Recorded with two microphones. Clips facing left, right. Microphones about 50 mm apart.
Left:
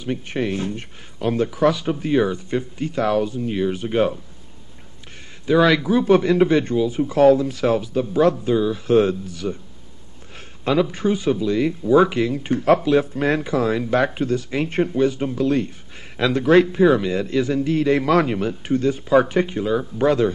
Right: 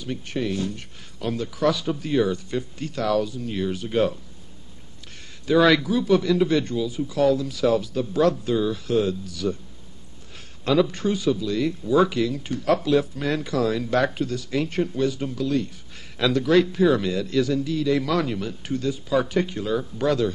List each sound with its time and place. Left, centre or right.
0.0 s a man's voice: left
5.5 s a man's voice: centre
5.9 s a man's voice: left
7.8 s speech: left
8.8 s a man's voice: left
10.6 s a man's voice: centre